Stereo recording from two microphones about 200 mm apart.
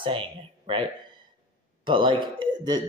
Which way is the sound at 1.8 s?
25° right (ahead or behind).